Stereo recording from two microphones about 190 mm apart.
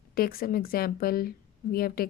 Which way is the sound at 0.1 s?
50° left (ahead or behind).